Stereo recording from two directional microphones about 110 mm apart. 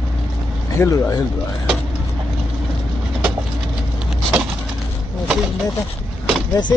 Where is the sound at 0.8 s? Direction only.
30° left (ahead or behind).